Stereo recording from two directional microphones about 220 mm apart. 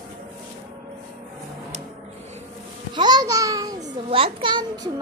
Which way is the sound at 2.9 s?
20° right (ahead or behind).